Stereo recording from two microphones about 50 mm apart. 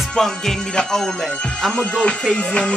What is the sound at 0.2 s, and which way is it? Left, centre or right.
Music, centre.